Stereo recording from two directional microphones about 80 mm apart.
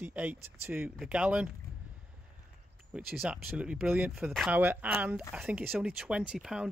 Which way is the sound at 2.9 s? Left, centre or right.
Centre.